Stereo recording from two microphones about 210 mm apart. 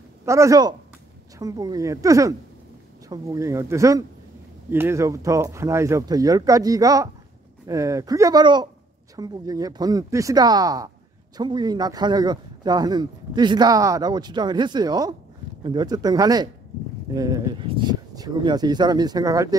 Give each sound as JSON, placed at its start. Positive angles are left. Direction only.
{"t": 0.2, "sound": "speech", "side_deg": -15}